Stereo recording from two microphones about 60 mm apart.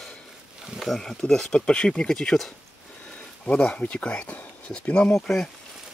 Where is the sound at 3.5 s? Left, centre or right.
Centre.